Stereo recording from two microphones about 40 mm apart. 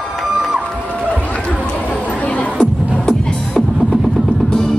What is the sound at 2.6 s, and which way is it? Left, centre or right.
Music, left.